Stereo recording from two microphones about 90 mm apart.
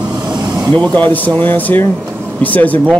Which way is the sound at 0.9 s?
20° left (ahead or behind).